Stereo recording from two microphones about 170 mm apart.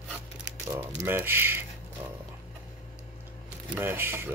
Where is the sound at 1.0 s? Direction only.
10° right (ahead or behind).